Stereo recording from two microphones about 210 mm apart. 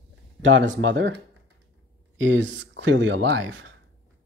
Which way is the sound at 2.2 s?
60° right (ahead or behind).